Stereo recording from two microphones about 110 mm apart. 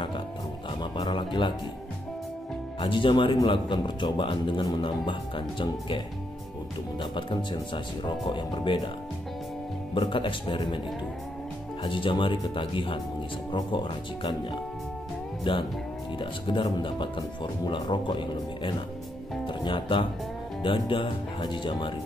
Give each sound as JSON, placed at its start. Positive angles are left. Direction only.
{"t": 0.9, "sound": "a man's voice", "side_deg": 45}
{"t": 2.8, "sound": "a man's voice", "side_deg": 50}
{"t": 9.9, "sound": "a man's voice", "side_deg": 50}
{"t": 11.8, "sound": "a man's voice", "side_deg": 50}
{"t": 15.5, "sound": "a man's voice", "side_deg": 50}